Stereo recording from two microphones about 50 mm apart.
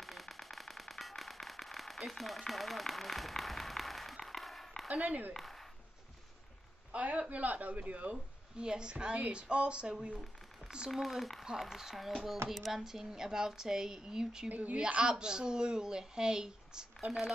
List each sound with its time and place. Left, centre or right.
0.0 s firecracker: centre
4.8 s speech: right
5.3 s a sound: centre
6.9 s speech: right
8.5 s speech: centre
10.9 s speech: centre
14.5 s a woman's voice: right
14.8 s speech: centre